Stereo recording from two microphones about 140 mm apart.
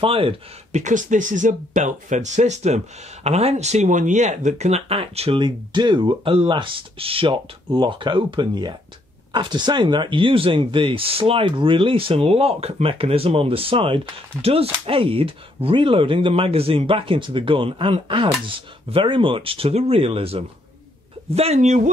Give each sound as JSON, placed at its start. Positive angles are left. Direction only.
{"t": 0.0, "sound": "speech", "side_deg": -40}
{"t": 0.7, "sound": "speech", "side_deg": -60}
{"t": 5.4, "sound": "speech", "side_deg": -35}